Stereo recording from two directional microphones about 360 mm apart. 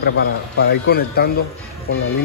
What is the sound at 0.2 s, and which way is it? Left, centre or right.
A man's voice, left.